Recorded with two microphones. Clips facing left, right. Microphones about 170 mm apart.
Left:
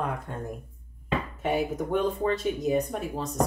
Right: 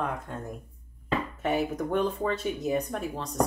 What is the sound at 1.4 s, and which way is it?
Speech, centre (ahead or behind).